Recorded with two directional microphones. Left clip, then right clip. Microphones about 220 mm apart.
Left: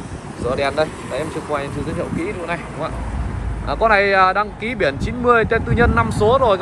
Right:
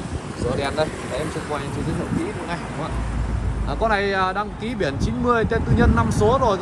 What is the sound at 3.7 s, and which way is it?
Speech, 10° right (ahead or behind).